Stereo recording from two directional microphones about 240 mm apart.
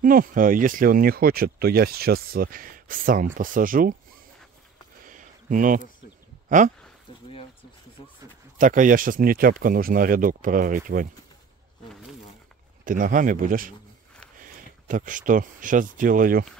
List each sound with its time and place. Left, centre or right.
0.0 s speech: right
5.0 s a sound: right
8.5 s speech: right
12.8 s speech: right